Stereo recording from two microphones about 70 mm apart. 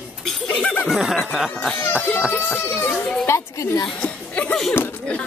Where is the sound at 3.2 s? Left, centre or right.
Left.